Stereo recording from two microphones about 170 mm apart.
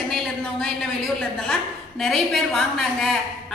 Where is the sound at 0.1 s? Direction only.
Centre (ahead or behind).